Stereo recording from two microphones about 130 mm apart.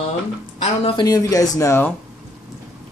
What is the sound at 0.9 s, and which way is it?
Speech, 30° left (ahead or behind).